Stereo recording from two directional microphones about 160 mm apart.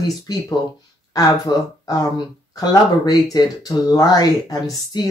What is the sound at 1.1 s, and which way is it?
Speech, 25° left (ahead or behind).